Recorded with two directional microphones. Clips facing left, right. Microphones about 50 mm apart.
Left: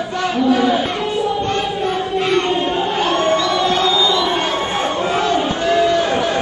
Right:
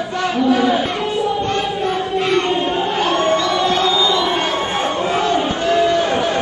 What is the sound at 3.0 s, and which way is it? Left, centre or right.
Crowd, right.